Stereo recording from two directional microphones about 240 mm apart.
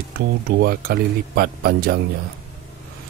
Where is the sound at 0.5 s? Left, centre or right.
Right.